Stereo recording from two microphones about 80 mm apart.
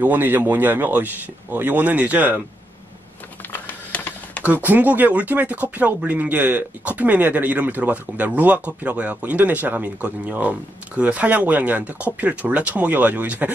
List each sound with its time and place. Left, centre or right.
0.0 s speech: right
3.5 s a sound: centre
4.5 s speech: right